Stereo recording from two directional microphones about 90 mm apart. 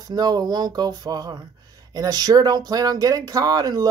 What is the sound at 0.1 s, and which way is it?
Speech, 45° right (ahead or behind).